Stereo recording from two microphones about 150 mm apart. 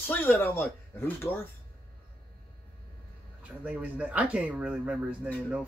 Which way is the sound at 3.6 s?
10° right (ahead or behind).